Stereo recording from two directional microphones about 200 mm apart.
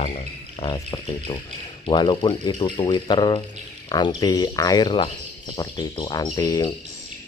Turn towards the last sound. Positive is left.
turn(degrees=20)  # may be behind; listen again after turning